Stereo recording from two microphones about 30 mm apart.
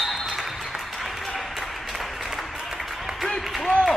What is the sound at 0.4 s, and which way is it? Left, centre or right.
Applause, centre.